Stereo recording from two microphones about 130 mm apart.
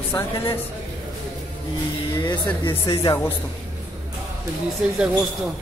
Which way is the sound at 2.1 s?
25° left (ahead or behind).